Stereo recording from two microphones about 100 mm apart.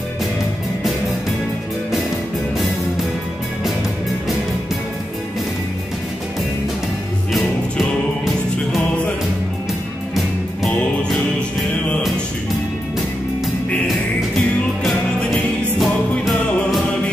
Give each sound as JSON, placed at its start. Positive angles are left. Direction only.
{"t": 14.8, "sound": "music", "side_deg": 0}